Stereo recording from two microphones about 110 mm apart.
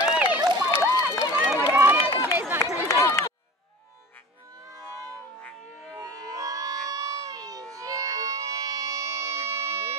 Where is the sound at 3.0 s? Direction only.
25° left (ahead or behind).